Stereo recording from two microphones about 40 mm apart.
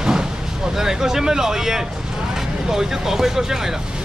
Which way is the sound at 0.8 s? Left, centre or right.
Centre.